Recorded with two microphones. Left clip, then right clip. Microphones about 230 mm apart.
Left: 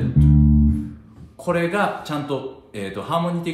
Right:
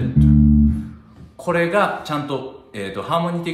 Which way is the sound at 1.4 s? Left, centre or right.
Centre.